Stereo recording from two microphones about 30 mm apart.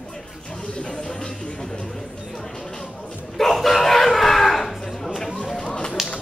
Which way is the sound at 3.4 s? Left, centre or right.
Centre.